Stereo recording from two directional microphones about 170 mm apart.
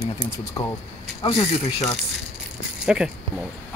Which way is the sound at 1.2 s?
35° left (ahead or behind).